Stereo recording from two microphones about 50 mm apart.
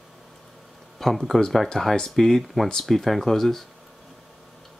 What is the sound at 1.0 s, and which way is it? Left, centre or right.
Speech, centre.